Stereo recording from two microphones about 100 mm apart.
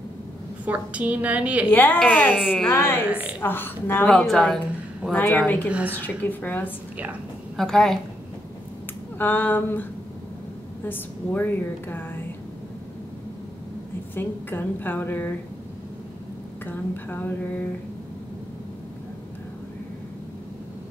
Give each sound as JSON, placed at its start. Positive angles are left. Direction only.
{"t": 0.7, "sound": "a woman's voice", "side_deg": -15}
{"t": 1.7, "sound": "a woman's voice", "side_deg": 20}
{"t": 2.3, "sound": "a woman's voice", "side_deg": -5}
{"t": 2.7, "sound": "a woman's voice", "side_deg": 20}
{"t": 3.1, "sound": "a woman's voice", "side_deg": -10}
{"t": 3.3, "sound": "a woman's voice", "side_deg": 20}
{"t": 4.1, "sound": "a woman's voice", "side_deg": 5}
{"t": 5.1, "sound": "a woman's voice", "side_deg": 15}
{"t": 5.7, "sound": "a woman's voice", "side_deg": -10}
{"t": 5.9, "sound": "a woman's voice", "side_deg": 20}
{"t": 7.5, "sound": "a woman's voice", "side_deg": 5}
{"t": 9.2, "sound": "a woman's voice", "side_deg": 20}
{"t": 14.1, "sound": "a woman's voice", "side_deg": 20}
{"t": 16.6, "sound": "a woman's voice", "side_deg": 20}